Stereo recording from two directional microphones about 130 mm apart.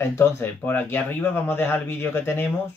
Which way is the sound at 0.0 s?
20° left (ahead or behind).